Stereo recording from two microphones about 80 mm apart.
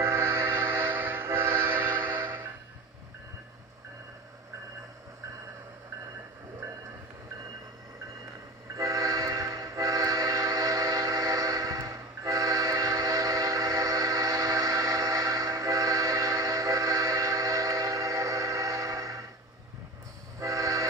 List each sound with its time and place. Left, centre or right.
0.0 s train: right
2.0 s music: right
8.7 s train: right
20.3 s train: right